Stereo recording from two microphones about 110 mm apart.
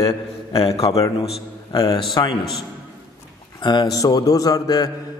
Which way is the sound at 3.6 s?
35° left (ahead or behind).